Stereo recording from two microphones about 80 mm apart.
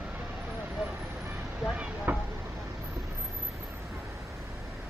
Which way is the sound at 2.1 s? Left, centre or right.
Right.